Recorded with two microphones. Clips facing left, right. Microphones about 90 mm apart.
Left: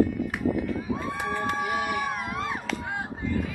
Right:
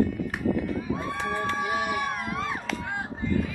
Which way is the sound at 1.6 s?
20° right (ahead or behind).